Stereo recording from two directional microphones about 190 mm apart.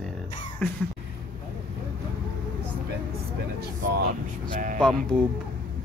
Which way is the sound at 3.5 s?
55° right (ahead or behind).